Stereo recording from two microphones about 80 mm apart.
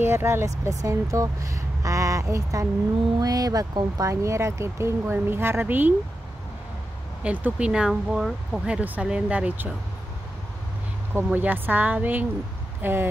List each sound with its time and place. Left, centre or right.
0.0 s a woman's voice: right
7.2 s speech: centre
11.3 s a woman's voice: right